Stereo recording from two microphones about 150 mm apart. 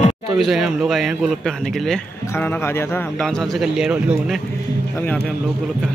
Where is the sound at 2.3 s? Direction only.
15° left (ahead or behind).